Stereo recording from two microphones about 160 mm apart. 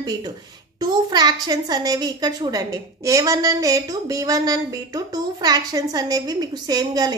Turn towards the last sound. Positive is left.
turn(degrees=-25)  # may be behind; listen again after turning